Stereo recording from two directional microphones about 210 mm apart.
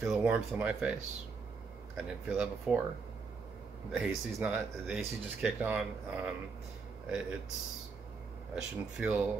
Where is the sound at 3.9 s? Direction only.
5° right (ahead or behind).